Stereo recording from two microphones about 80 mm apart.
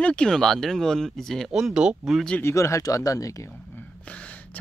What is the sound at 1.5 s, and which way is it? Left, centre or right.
Speech, centre.